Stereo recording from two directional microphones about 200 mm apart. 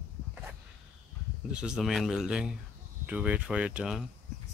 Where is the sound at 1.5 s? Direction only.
5° right (ahead or behind).